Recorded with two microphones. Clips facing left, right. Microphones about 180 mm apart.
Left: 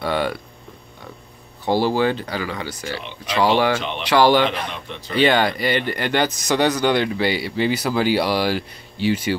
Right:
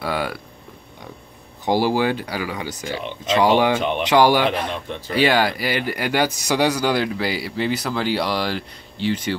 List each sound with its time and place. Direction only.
0.0 s speech: 5° right (ahead or behind)
1.6 s speech: 15° right (ahead or behind); by 9.4 s 5° left (ahead or behind)